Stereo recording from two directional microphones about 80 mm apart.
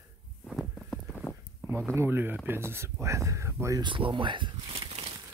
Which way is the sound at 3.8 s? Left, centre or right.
Right.